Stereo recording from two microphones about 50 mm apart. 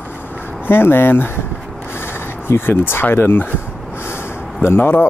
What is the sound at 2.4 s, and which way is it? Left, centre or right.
Speech, left.